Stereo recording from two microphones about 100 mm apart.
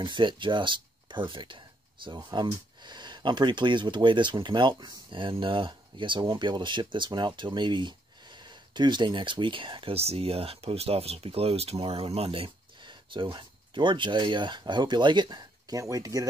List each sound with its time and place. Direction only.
0.0 s speech: 55° right (ahead or behind)
9.9 s speech: 85° right; by 15.8 s 45° right (ahead or behind)
15.8 s speech: 35° right (ahead or behind)